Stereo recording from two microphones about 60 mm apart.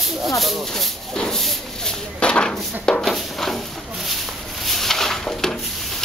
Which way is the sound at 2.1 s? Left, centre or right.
Centre.